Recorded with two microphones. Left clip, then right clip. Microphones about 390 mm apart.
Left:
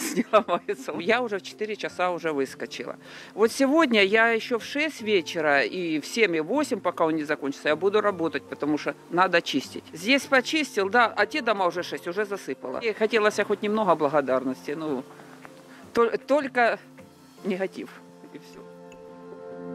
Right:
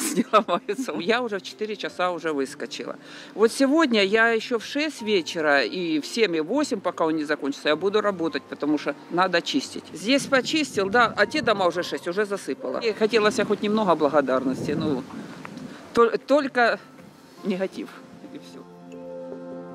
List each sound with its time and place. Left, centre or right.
0.0 s speech: left
0.9 s speech: left
15.9 s speech: left